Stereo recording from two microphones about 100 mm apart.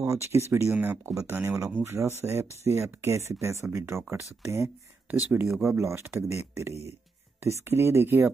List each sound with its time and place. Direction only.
0.0 s speech: 30° right (ahead or behind)